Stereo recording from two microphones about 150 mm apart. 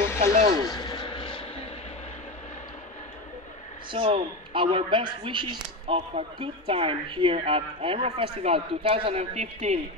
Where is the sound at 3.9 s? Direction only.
35° right (ahead or behind).